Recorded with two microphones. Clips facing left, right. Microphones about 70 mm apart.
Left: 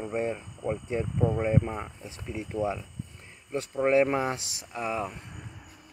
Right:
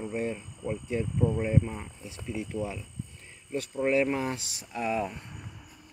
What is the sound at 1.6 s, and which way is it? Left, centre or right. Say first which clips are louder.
Speech: left 1 dB; left.